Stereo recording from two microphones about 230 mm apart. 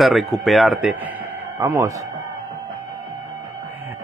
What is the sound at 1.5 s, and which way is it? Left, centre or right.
Speech, centre.